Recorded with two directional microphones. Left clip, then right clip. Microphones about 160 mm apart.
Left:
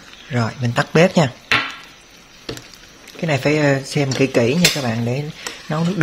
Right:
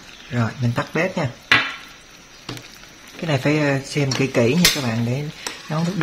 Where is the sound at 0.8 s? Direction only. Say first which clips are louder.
Left 8 dB; 65° left (ahead or behind).